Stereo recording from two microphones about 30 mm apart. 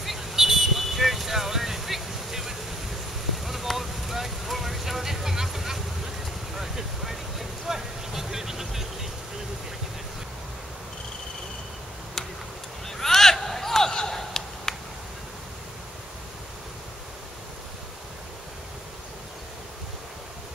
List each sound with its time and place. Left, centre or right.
0.2 s vehicle: centre
3.7 s vehicle: centre
12.8 s a sound: centre